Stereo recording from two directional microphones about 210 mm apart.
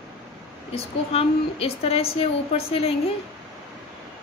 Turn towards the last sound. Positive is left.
turn(degrees=30)  # may be behind; listen again after turning